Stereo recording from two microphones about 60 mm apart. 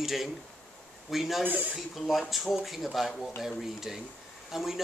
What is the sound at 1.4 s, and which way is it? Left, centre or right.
Speech, right.